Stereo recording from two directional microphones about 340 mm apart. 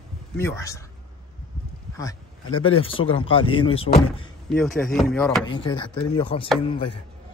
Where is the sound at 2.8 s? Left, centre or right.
Centre.